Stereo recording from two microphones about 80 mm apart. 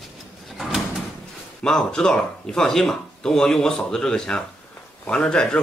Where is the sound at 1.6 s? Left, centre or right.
Centre.